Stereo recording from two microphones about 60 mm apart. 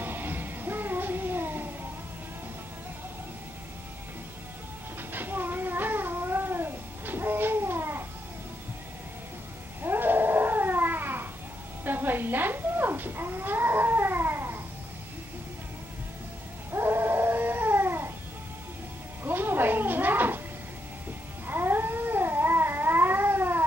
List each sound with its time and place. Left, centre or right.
0.0 s music: right
5.1 s cat: right
9.8 s cat: right
11.8 s a sound: right
16.7 s dog: right
19.2 s a sound: right
21.5 s cat: right